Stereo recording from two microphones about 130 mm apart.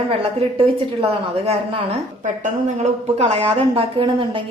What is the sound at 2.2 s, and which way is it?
Speech, 75° right (ahead or behind).